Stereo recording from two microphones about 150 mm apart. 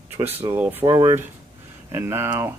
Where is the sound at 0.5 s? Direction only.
15° right (ahead or behind).